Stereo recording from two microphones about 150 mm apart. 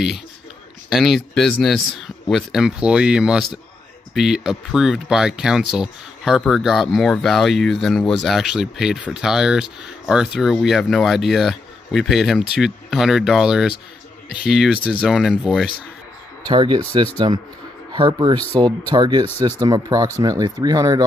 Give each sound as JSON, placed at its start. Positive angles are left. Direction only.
{"t": 0.8, "sound": "speech", "side_deg": 0}
{"t": 16.4, "sound": "speech", "side_deg": -30}